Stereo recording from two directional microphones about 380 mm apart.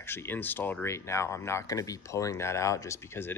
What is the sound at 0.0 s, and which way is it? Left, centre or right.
Speech, centre.